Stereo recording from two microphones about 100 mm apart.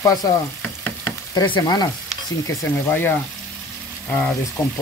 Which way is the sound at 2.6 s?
20° left (ahead or behind).